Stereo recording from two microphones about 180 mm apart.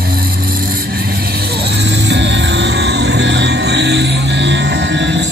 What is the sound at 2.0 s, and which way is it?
Music, 70° right (ahead or behind).